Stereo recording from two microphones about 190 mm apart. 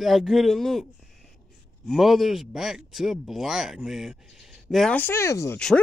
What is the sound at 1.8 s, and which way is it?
Speech, centre (ahead or behind).